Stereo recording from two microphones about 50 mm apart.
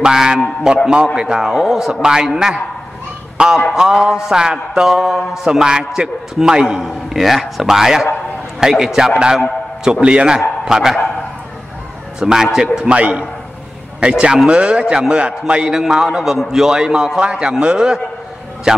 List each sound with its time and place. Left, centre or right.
0.0 s a man's voice: centre
12.2 s a man's voice: centre
12.7 s a man's voice: right